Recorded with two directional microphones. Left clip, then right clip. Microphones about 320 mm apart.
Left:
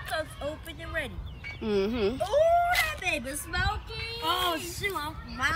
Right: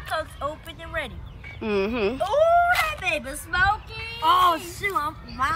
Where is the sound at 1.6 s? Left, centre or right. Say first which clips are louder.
Right 4 dB; centre.